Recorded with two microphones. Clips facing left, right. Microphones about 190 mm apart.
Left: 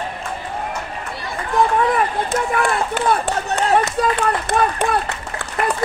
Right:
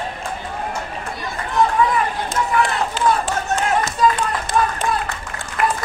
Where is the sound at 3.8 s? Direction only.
60° left (ahead or behind).